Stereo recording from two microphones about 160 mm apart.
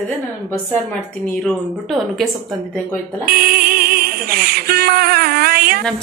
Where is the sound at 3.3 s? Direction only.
70° right (ahead or behind).